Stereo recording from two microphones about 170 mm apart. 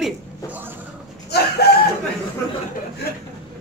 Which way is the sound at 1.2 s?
70° left (ahead or behind).